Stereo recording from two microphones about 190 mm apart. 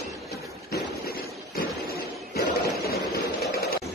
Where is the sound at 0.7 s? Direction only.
50° left (ahead or behind).